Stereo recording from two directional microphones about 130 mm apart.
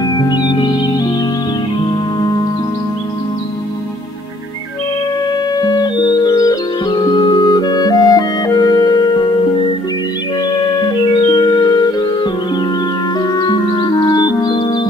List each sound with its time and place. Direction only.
0.0 s music: 30° left (ahead or behind)
5.6 s music: 30° left (ahead or behind)
10.5 s music: 30° left (ahead or behind)